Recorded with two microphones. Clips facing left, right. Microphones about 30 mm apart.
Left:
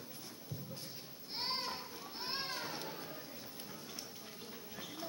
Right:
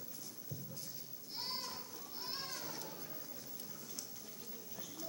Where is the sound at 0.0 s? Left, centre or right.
Left.